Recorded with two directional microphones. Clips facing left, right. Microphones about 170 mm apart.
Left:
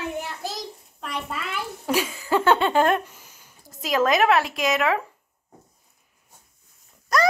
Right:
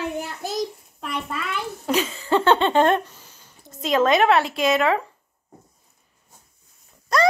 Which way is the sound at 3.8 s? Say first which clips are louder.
Right 2 dB; centre (ahead or behind).